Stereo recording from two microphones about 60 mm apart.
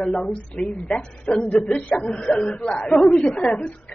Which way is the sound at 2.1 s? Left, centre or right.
Centre.